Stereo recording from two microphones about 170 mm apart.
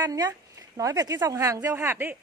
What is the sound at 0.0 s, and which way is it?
A woman's voice, 20° right (ahead or behind).